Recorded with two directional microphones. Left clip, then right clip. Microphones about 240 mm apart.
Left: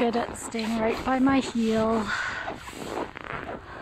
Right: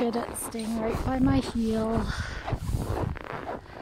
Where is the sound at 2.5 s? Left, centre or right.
Left.